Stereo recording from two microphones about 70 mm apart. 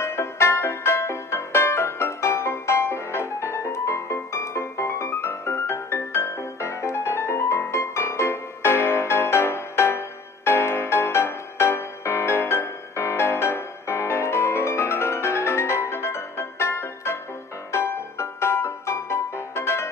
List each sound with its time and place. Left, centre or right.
0.0 s music: left